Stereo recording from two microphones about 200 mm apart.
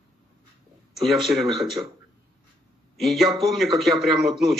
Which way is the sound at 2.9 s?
Centre (ahead or behind).